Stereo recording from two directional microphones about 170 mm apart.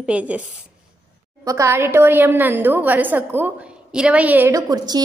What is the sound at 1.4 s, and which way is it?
A woman's voice, 20° right (ahead or behind).